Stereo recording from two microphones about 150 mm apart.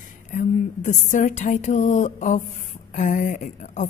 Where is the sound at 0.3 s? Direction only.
60° left (ahead or behind).